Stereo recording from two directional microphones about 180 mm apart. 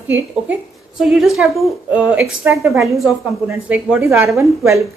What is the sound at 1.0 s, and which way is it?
A woman's voice, centre (ahead or behind).